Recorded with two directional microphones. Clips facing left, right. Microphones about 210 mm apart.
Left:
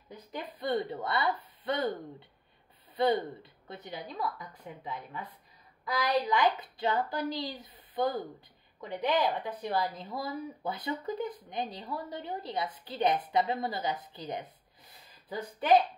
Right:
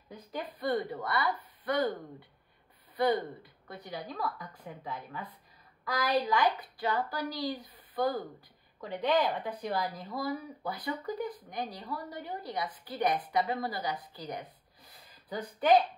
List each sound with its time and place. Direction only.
0.4 s a woman's voice: 20° left (ahead or behind)
3.0 s a woman's voice: 25° left (ahead or behind)
6.2 s a woman's voice: 20° left (ahead or behind)